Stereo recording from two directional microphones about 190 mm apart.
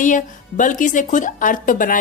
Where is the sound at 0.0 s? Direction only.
40° left (ahead or behind).